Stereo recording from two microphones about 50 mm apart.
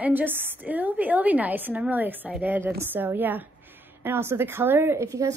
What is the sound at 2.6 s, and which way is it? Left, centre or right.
Speech, right.